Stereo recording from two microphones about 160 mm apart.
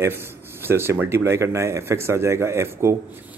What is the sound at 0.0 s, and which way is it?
A man's voice, 15° right (ahead or behind).